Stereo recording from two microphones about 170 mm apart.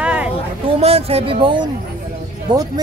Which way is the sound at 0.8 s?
35° right (ahead or behind).